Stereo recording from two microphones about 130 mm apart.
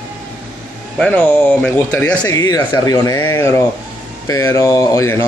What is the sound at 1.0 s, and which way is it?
Speech, 5° left (ahead or behind).